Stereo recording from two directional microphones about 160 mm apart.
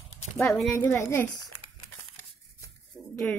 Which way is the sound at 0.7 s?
15° left (ahead or behind).